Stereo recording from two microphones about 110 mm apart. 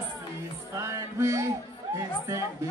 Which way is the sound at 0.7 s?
25° right (ahead or behind).